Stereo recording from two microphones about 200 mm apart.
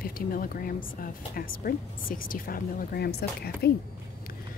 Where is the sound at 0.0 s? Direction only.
45° left (ahead or behind).